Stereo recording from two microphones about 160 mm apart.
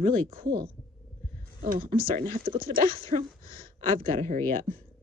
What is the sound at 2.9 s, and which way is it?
Speech, 35° right (ahead or behind).